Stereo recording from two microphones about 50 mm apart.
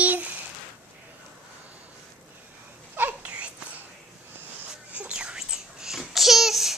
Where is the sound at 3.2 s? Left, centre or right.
Right.